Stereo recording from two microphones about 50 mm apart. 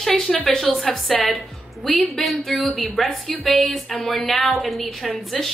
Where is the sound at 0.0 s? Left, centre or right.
Centre.